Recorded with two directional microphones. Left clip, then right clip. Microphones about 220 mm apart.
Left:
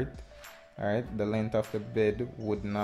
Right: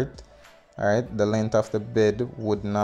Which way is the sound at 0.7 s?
20° right (ahead or behind).